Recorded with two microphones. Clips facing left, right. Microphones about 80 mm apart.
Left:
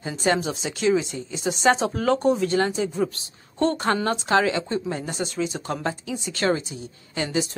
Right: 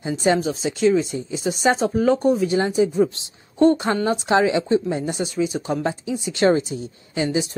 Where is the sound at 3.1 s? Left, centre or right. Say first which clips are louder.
Even; right.